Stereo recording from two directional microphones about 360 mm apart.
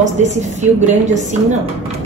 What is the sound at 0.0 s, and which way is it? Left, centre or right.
A woman's voice, centre.